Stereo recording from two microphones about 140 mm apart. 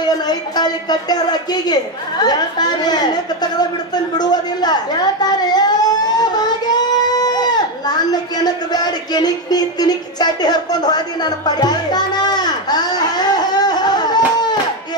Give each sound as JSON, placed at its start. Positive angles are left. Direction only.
{"t": 0.0, "sound": "a woman's voice", "side_deg": 30}